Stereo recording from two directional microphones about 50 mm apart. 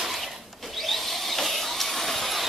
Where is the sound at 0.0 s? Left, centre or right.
Centre.